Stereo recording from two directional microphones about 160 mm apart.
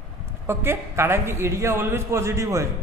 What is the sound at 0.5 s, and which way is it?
A man's voice, 15° right (ahead or behind).